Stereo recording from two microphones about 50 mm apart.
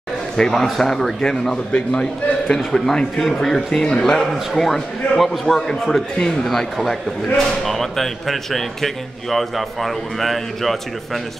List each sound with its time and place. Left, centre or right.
0.4 s a man's voice: centre